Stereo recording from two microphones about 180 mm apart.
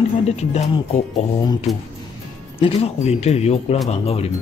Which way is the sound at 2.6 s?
35° left (ahead or behind).